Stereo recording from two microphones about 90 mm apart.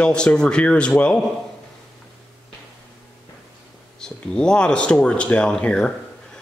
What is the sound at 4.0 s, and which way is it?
Speech, 10° left (ahead or behind).